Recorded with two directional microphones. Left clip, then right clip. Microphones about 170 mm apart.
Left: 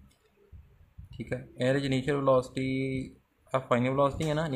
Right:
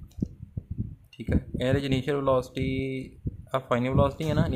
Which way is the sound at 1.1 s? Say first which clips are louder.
Right 5 dB; 20° right (ahead or behind).